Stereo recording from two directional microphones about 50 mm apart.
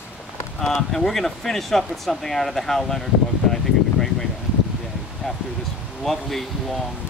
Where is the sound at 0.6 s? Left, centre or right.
Centre.